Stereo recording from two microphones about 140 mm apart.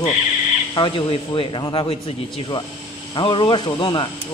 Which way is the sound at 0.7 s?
35° left (ahead or behind).